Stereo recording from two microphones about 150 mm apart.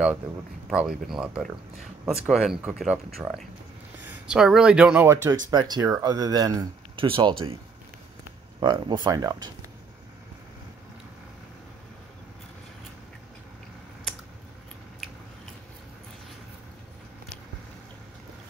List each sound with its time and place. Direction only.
0.7 s speech: 5° right (ahead or behind)
4.3 s speech: 5° right (ahead or behind)
5.0 s speech: 15° right (ahead or behind); by 7.5 s 35° right (ahead or behind)
8.5 s speech: 30° right (ahead or behind)